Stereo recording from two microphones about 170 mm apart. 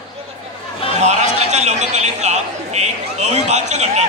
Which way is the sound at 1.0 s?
40° right (ahead or behind).